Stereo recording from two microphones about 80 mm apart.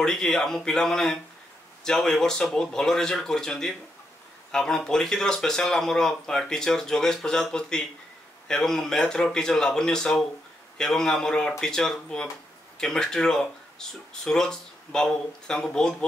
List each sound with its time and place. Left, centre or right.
0.0 s speech: centre